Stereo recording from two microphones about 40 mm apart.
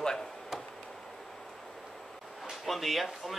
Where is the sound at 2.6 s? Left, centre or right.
Centre.